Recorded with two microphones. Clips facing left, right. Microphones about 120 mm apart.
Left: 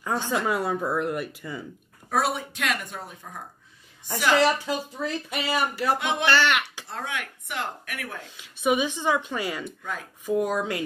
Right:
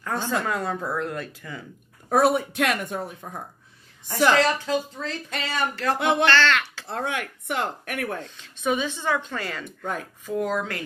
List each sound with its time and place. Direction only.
0.0 s a woman's voice: 15° left (ahead or behind)
2.0 s speech: 50° right (ahead or behind)
4.3 s speech: 10° left (ahead or behind)
5.9 s speech: 55° right (ahead or behind)
6.2 s a child's voice: 15° left (ahead or behind)
6.9 s speech: 55° right (ahead or behind)
8.4 s speech: 15° left (ahead or behind)